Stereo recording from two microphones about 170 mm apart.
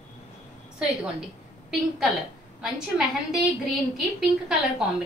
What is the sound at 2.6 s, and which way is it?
Speech, 5° right (ahead or behind).